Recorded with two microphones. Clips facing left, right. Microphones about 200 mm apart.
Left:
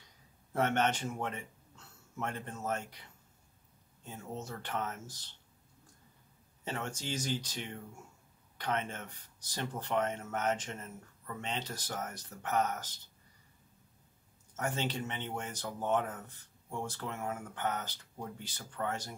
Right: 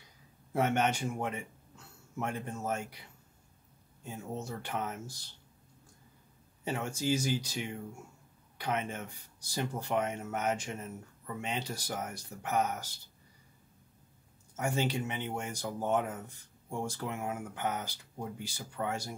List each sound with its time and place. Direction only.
0.5 s a man's voice: 10° right (ahead or behind)
6.6 s speech: 10° right (ahead or behind)
14.5 s speech: 10° right (ahead or behind)